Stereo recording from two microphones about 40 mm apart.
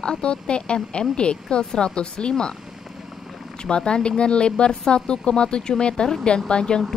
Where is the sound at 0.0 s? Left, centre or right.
Left.